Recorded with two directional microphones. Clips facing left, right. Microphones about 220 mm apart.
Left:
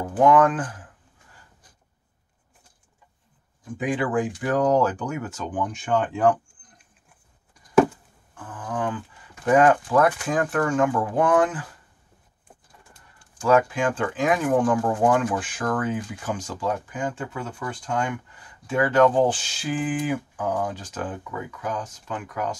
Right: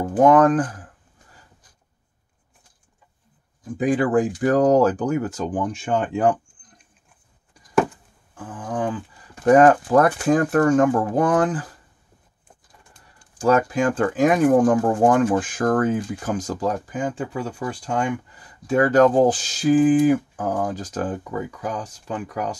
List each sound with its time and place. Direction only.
0.2 s speech: 40° right (ahead or behind)
3.7 s speech: 40° right (ahead or behind)
8.4 s speech: 30° right (ahead or behind)
13.4 s speech: 40° right (ahead or behind)